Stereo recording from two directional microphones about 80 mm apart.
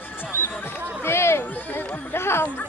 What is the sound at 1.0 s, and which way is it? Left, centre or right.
Chatter, left.